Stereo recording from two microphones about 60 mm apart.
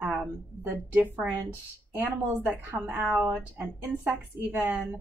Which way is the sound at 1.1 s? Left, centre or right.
Right.